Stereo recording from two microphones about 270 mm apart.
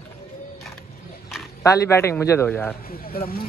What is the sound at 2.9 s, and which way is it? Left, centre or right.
Speech, left.